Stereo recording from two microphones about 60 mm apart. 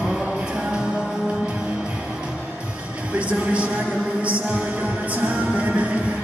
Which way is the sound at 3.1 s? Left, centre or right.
Right.